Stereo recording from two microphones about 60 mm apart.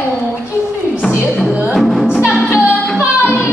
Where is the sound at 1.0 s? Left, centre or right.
Centre.